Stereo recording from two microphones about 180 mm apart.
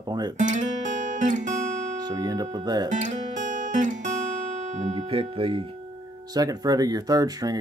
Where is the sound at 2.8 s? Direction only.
45° right (ahead or behind).